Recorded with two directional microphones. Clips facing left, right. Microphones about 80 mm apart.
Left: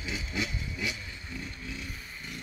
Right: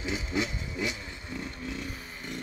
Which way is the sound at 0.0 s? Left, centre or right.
Right.